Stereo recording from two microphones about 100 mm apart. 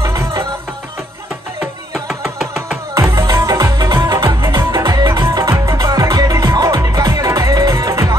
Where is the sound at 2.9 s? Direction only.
30° right (ahead or behind).